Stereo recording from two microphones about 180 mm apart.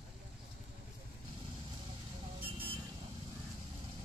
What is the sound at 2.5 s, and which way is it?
Vehicle, 30° right (ahead or behind).